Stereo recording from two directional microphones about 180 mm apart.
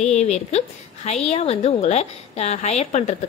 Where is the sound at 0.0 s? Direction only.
40° left (ahead or behind).